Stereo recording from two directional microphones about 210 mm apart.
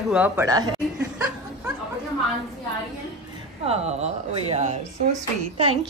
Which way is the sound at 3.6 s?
30° right (ahead or behind).